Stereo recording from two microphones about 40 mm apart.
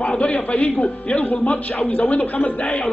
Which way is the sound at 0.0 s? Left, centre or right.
Left.